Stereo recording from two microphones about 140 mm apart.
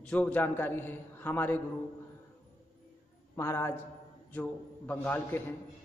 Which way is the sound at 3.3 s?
20° left (ahead or behind).